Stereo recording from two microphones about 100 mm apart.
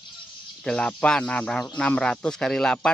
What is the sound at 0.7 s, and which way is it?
Speech, 10° left (ahead or behind).